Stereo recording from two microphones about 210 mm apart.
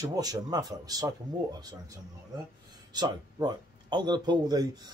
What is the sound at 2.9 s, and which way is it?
Speech, 20° right (ahead or behind).